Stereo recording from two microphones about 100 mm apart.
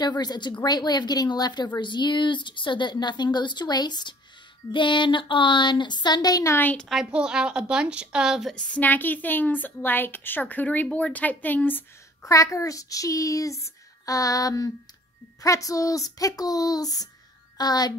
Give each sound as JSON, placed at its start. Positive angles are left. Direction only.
{"t": 0.0, "sound": "speech", "side_deg": 45}
{"t": 6.4, "sound": "a woman's voice", "side_deg": 20}
{"t": 6.8, "sound": "a woman's voice", "side_deg": 0}
{"t": 8.5, "sound": "a woman's voice", "side_deg": 10}
{"t": 12.2, "sound": "speech", "side_deg": 30}